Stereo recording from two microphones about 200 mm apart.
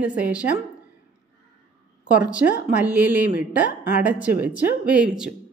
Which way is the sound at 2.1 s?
5° right (ahead or behind).